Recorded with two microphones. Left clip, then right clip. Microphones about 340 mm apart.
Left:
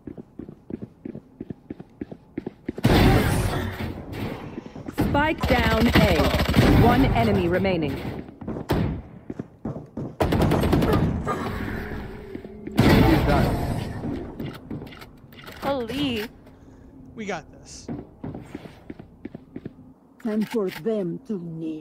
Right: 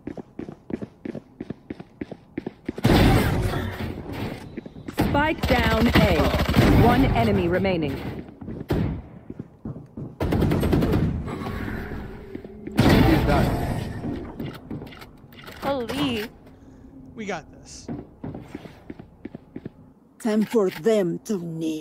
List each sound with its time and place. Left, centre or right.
1.0 s a sound: centre
4.8 s speech: centre
10.3 s gunshot: centre
17.1 s a sound: centre
20.3 s speech: centre
20.8 s speech: right